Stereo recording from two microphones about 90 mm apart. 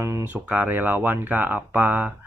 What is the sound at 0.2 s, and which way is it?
Speech, 20° right (ahead or behind).